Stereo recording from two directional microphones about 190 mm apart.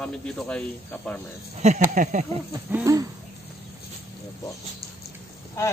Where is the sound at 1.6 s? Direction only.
40° right (ahead or behind).